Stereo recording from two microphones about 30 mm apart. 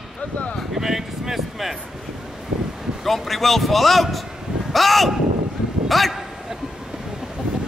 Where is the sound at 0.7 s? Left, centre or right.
Centre.